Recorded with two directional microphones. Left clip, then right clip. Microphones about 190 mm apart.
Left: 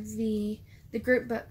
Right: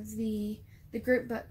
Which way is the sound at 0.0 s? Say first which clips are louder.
Left 4 dB; centre (ahead or behind).